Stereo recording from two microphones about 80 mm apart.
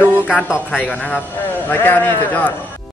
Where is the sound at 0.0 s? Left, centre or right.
Right.